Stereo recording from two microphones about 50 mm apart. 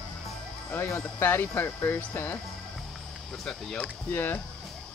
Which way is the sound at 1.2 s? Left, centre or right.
Left.